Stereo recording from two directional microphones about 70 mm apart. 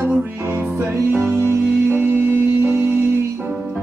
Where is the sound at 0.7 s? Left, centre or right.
Right.